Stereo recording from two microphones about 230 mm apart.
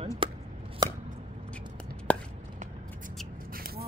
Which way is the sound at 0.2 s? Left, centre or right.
Right.